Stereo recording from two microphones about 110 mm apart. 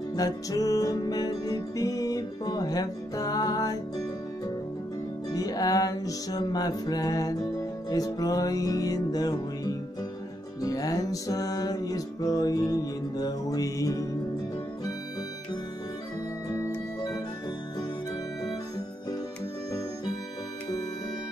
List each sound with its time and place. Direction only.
0.1 s music: 35° left (ahead or behind)
5.3 s music: 35° left (ahead or behind)